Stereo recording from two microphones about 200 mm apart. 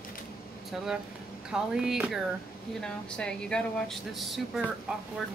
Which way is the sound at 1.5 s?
5° right (ahead or behind).